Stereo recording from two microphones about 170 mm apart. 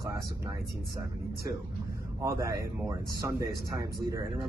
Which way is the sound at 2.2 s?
20° right (ahead or behind).